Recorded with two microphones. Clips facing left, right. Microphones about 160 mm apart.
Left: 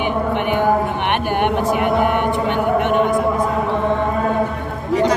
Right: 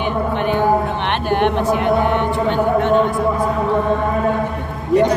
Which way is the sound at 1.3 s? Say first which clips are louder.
Right 3 dB; 10° left (ahead or behind).